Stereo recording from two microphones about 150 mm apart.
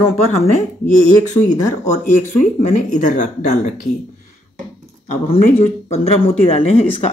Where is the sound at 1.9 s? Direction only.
55° left (ahead or behind).